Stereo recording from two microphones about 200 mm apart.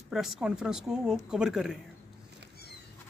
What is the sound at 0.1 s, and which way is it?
Speech, centre (ahead or behind).